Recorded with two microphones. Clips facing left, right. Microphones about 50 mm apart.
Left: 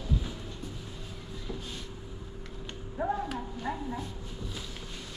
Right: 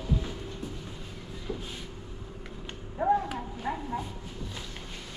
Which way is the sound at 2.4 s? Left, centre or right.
Centre.